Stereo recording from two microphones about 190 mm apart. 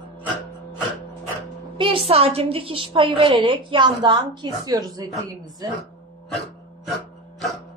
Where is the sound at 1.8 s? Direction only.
30° right (ahead or behind).